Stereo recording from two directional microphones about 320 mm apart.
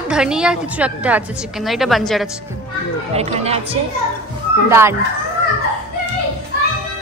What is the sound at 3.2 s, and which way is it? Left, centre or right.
Speech, centre.